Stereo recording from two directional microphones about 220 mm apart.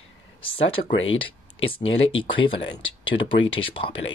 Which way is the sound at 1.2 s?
25° left (ahead or behind).